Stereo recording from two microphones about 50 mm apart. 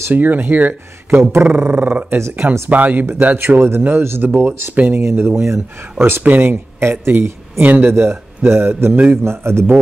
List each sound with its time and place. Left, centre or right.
0.1 s speech: right
2.1 s a man's voice: right
2.7 s speech: right
3.3 s speech: right
6.2 s a man's voice: right